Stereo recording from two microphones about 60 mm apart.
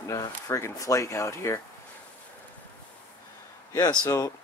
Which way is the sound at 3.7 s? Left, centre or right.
Left.